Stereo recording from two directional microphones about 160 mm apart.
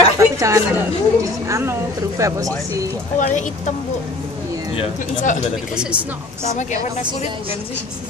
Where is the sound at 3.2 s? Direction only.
50° left (ahead or behind).